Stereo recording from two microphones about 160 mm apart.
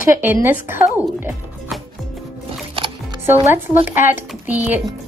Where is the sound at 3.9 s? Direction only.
15° right (ahead or behind).